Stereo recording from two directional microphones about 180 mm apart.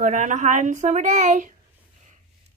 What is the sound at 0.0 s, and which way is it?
A woman's voice, 45° right (ahead or behind).